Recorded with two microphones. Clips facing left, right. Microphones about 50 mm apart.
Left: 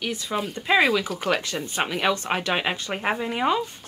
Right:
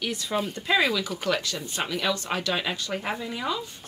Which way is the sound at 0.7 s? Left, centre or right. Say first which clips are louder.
Left 5 dB; left.